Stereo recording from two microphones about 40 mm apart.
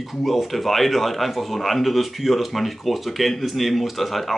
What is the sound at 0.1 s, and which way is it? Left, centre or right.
Speech, centre.